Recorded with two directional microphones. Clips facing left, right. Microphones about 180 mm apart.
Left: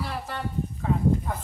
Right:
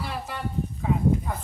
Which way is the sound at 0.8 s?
10° right (ahead or behind).